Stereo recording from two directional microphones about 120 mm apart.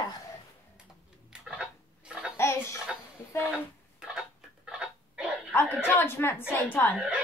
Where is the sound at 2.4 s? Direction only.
20° left (ahead or behind).